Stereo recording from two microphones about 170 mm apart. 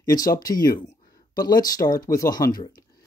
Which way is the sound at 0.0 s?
20° left (ahead or behind).